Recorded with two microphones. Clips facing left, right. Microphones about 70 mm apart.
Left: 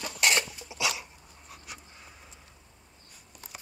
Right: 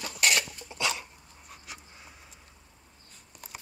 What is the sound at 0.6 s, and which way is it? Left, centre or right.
Dog, centre.